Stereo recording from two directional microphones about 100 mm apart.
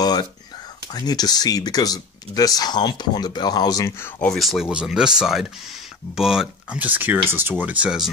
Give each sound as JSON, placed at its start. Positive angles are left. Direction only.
{"t": 0.0, "sound": "a sound", "side_deg": 45}
{"t": 0.9, "sound": "speech", "side_deg": 40}
{"t": 4.2, "sound": "speech", "side_deg": 0}
{"t": 6.8, "sound": "speech", "side_deg": -20}